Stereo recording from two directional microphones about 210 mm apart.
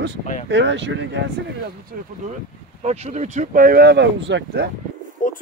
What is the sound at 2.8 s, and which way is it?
Speech, 35° right (ahead or behind).